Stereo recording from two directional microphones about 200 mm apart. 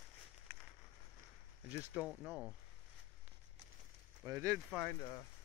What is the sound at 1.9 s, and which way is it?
Speech, centre (ahead or behind).